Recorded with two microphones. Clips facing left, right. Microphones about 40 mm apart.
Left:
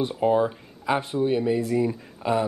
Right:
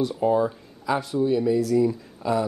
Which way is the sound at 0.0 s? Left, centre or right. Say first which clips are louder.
Even; left.